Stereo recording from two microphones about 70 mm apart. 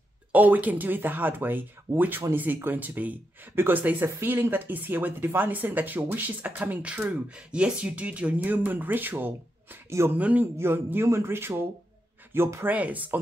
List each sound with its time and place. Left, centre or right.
0.3 s speech: right
9.8 s speech: right
10.1 s speech: right
10.6 s speech: right
12.6 s speech: right